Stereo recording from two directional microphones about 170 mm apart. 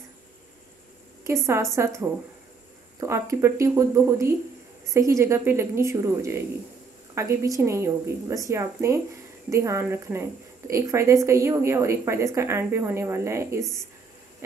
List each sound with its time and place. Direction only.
1.2 s a woman's voice: 15° right (ahead or behind)
3.0 s a woman's voice: 15° right (ahead or behind)